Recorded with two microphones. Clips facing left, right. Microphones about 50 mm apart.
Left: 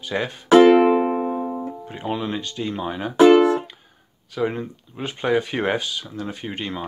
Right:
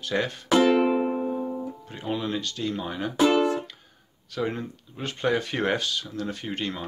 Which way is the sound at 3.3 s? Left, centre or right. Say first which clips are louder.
Left 7 dB; left.